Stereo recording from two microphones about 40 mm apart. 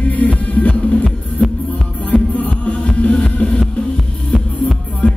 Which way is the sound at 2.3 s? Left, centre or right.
Left.